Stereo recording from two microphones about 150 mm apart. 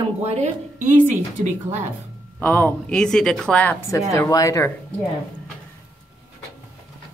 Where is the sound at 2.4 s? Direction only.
10° left (ahead or behind).